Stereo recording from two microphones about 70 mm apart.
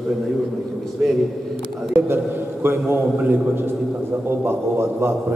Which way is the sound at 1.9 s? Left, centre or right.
Right.